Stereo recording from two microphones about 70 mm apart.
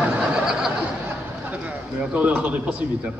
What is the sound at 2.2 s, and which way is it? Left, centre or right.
Speech, centre.